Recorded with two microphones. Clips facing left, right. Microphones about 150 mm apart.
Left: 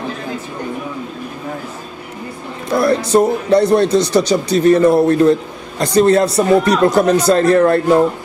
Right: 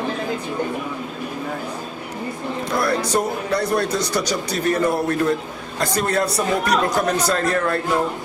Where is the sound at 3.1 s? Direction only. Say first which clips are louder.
Left 9 dB; 25° left (ahead or behind).